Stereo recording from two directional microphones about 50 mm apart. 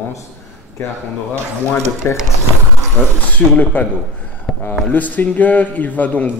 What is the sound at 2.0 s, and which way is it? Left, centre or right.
Speech, left.